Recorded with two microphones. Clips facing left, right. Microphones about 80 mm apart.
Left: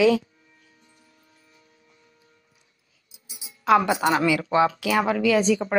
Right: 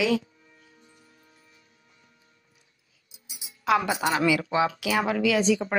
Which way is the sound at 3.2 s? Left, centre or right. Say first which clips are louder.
Left 4 dB; left.